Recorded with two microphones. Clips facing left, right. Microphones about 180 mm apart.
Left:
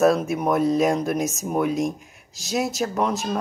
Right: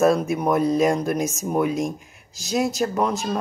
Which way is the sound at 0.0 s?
Centre (ahead or behind).